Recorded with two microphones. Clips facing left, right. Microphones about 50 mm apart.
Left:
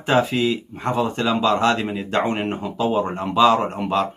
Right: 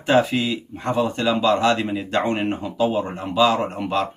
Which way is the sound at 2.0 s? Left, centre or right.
Left.